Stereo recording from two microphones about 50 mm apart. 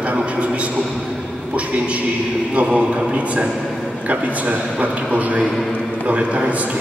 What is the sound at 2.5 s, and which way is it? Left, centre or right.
A man's voice, right.